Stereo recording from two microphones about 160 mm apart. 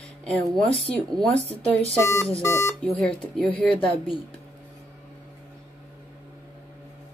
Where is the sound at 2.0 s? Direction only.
15° left (ahead or behind).